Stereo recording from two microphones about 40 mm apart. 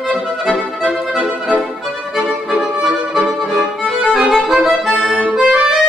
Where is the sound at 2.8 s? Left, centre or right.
Centre.